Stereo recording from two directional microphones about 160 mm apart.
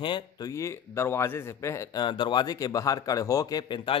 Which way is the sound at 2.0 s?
30° left (ahead or behind).